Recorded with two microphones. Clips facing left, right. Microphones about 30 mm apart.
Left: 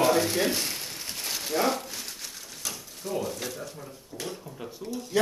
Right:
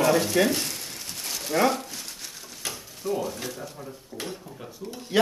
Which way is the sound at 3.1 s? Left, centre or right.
Centre.